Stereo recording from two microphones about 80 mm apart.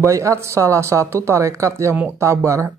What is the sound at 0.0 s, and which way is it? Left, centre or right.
Speech, right.